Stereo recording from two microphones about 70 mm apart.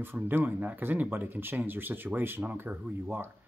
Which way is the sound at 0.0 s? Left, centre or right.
Right.